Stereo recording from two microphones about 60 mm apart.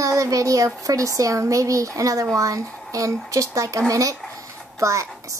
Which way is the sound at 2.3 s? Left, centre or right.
Right.